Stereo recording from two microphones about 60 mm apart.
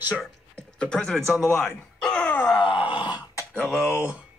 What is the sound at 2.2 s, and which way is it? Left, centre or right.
Groan, left.